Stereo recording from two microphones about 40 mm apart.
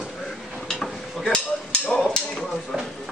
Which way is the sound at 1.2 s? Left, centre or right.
Centre.